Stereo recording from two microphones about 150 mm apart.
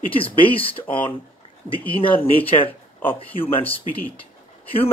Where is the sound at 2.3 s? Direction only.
40° left (ahead or behind).